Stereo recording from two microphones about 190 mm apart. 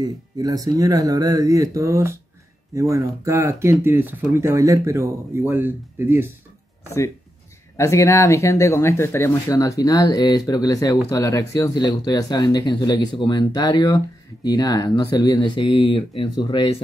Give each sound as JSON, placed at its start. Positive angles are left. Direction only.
{"t": 0.0, "sound": "speech", "side_deg": -20}
{"t": 7.7, "sound": "speech", "side_deg": 15}